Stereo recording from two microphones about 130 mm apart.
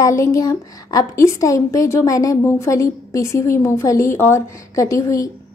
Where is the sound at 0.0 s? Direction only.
25° left (ahead or behind).